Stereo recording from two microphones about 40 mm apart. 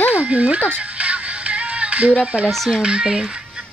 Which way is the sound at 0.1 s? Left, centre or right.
Right.